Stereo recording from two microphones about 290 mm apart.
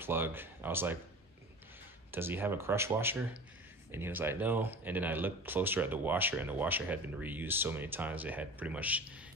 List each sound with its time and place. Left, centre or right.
0.0 s speech: centre
2.0 s speech: centre